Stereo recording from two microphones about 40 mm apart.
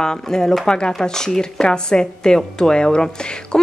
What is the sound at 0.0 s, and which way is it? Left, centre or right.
Speech, centre.